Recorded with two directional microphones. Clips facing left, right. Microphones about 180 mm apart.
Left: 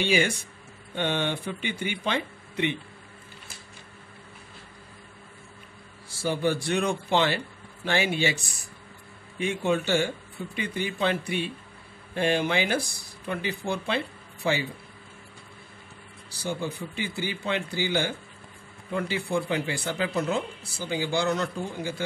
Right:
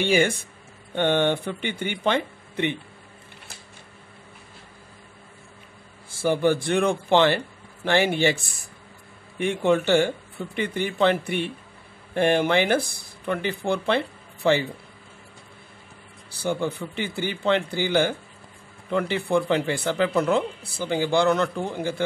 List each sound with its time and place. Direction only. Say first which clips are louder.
0.0 s speech: right 4 dB; 50° right (ahead or behind)
6.2 s speech: right 5 dB; 55° right (ahead or behind)
16.3 s speech: right 5 dB; 60° right (ahead or behind)